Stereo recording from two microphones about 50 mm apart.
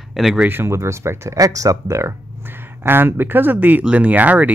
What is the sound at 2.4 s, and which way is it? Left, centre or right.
Speech, right.